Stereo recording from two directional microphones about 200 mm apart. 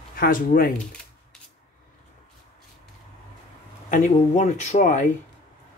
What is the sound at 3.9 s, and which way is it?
Speech, 40° left (ahead or behind).